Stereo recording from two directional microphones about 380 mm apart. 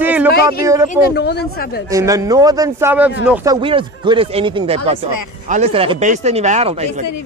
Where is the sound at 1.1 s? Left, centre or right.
Left.